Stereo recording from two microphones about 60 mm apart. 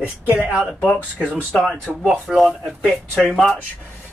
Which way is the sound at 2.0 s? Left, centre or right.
Centre.